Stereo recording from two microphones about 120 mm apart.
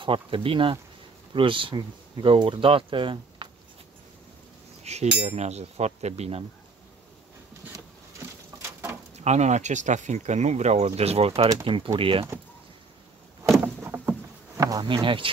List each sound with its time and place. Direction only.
0.0 s speech: 45° right (ahead or behind)
4.8 s cutlery: 65° right (ahead or behind)
9.1 s speech: 70° right (ahead or behind); by 12.3 s 50° right (ahead or behind)
13.8 s rowboat: 15° right (ahead or behind)
14.6 s insect: 30° right (ahead or behind)